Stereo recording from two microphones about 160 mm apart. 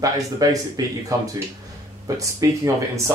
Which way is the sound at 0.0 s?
20° right (ahead or behind).